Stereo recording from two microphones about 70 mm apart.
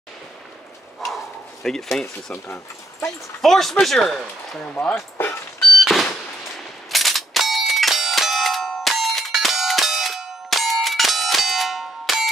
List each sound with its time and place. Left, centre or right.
1.0 s bow-wow: centre
2.3 s speech: left
3.3 s speech: centre
4.6 s speech: centre
4.9 s chop: left
5.8 s a sound: centre
6.9 s bell: centre